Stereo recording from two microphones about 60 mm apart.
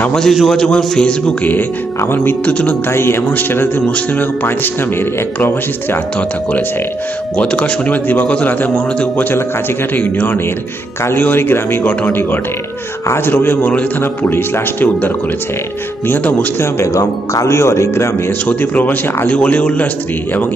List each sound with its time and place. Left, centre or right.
0.1 s a man's voice: centre
0.7 s a man's voice: centre
1.4 s a man's voice: left
2.9 s a man's voice: left
7.3 s a man's voice: centre; by 13.7 s left
13.7 s speech: left
14.3 s a man's voice: left
16.8 s speech: left
18.5 s speech: left